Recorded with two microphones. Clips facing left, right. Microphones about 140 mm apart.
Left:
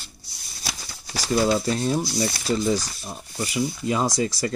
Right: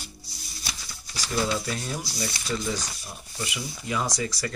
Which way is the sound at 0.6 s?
85° left.